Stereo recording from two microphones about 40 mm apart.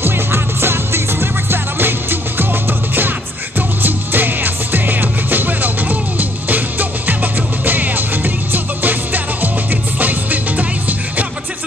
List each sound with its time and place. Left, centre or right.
0.0 s music: right